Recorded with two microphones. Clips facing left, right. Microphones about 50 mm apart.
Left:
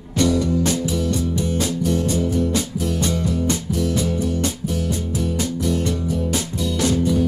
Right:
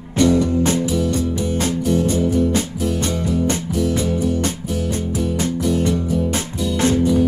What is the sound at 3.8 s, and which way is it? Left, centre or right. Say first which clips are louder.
Music: right 4 dB; centre.